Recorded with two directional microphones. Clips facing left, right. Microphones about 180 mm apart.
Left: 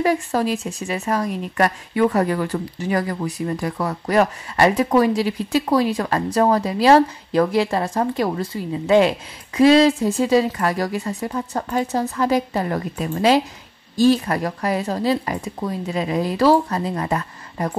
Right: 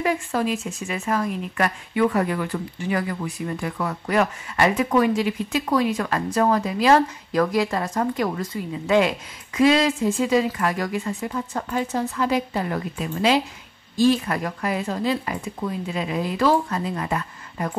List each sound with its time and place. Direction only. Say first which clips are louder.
0.0 s speech: left 4 dB; 35° left (ahead or behind)